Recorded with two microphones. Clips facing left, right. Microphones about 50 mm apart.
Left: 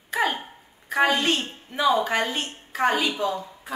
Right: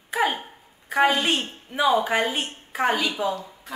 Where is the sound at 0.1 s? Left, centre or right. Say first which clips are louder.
Right 1 dB; centre.